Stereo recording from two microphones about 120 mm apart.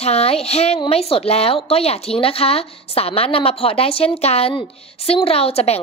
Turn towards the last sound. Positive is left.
turn(degrees=55)  # may be behind; listen again after turning